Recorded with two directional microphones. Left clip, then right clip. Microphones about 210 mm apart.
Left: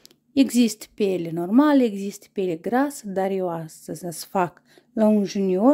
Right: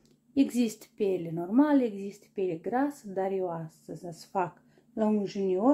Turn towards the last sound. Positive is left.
turn(degrees=60)  # may be behind; listen again after turning